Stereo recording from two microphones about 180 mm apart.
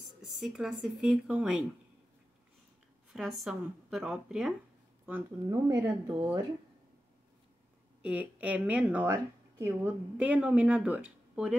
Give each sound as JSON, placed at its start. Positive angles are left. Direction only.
{"t": 0.5, "sound": "speech", "side_deg": -5}
{"t": 3.1, "sound": "a woman's voice", "side_deg": 0}
{"t": 8.0, "sound": "a woman's voice", "side_deg": -10}